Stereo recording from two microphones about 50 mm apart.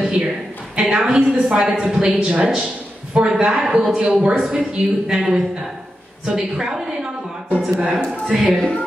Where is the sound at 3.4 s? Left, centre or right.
Centre.